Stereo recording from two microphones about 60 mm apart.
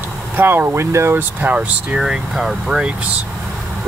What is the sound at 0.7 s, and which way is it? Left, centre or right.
Speech, right.